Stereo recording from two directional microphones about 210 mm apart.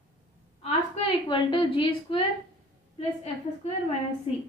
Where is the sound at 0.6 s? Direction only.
30° left (ahead or behind).